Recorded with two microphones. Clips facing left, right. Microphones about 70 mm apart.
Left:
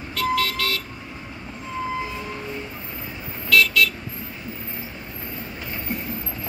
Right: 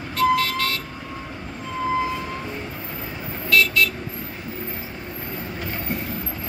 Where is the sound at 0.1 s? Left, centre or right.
Right.